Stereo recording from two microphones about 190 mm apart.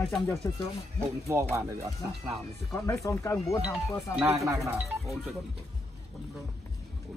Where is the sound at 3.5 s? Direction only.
5° right (ahead or behind).